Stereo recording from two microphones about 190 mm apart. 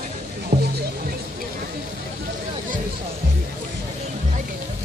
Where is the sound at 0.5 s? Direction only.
35° right (ahead or behind).